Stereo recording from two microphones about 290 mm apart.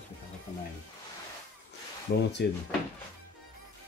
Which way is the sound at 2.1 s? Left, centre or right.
Left.